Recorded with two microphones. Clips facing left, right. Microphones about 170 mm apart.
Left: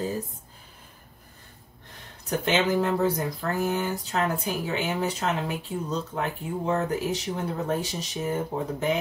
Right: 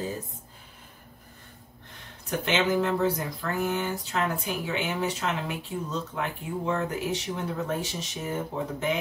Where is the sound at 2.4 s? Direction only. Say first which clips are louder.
Left 1 dB; 40° left (ahead or behind).